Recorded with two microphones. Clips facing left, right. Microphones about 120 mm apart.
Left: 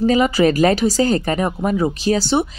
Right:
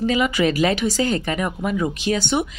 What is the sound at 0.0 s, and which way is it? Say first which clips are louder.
Speech: left 5 dB; 40° left (ahead or behind).